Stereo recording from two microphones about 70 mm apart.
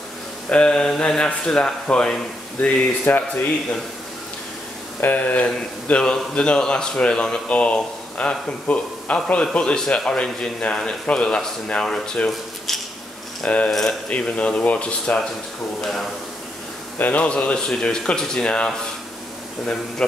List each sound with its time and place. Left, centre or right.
0.5 s speech: centre
5.0 s speech: left; by 13.9 s centre
14.0 s speech: centre
17.0 s speech: centre